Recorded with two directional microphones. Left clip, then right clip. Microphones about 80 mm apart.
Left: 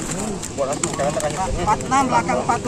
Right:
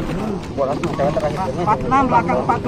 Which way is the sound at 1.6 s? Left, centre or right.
Centre.